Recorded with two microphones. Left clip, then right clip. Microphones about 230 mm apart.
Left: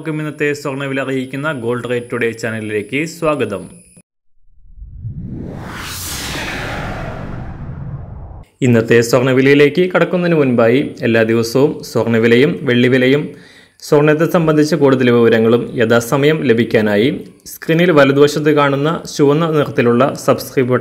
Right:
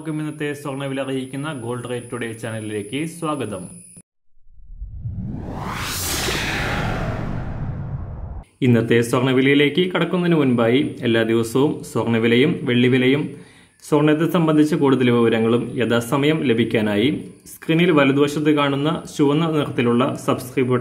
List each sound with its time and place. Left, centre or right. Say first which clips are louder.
0.0 s a man's voice: left 8 dB; left
5.9 s music: right 1 dB; centre
8.5 s a man's voice: left 6 dB; centre